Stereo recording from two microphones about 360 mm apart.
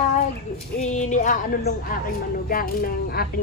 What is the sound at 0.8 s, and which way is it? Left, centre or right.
Speech, centre.